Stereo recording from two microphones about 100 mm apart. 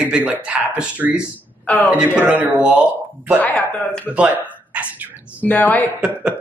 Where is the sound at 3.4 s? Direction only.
15° left (ahead or behind).